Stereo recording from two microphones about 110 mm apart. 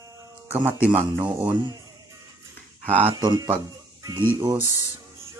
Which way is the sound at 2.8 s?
15° right (ahead or behind).